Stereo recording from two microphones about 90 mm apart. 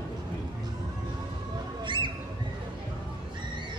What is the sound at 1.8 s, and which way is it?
Squawk, 60° right (ahead or behind).